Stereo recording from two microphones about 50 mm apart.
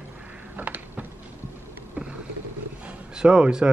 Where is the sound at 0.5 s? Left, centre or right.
Right.